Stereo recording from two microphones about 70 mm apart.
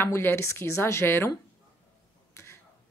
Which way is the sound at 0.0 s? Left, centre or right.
Left.